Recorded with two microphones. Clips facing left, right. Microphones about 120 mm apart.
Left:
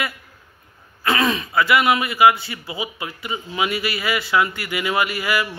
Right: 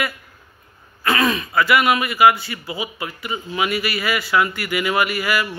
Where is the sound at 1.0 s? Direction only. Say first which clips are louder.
Right 1 dB; 20° left (ahead or behind).